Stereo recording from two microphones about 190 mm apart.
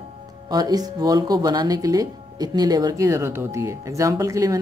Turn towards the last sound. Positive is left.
turn(degrees=-15)  # may be behind; listen again after turning